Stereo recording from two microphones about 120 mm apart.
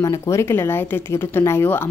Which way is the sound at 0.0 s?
25° left (ahead or behind).